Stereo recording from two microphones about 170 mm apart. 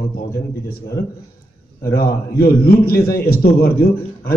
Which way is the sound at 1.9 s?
65° left (ahead or behind).